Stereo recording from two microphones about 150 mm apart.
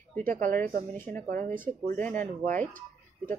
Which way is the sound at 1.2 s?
55° right (ahead or behind).